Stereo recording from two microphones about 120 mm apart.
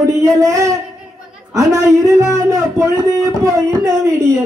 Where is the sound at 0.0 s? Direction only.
30° right (ahead or behind).